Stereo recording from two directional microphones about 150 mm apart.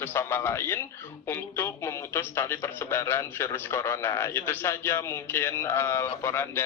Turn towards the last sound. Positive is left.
turn(degrees=15)  # may be behind; listen again after turning